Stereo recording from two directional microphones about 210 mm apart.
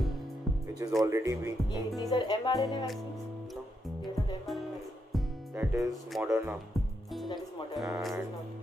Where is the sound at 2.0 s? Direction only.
20° left (ahead or behind).